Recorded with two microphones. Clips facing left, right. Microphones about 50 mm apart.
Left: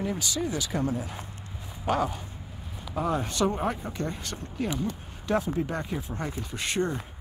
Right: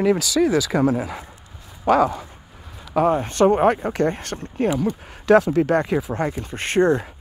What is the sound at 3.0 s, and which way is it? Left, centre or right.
Speech, right.